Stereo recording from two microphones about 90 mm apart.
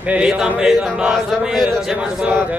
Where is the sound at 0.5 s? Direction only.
5° right (ahead or behind).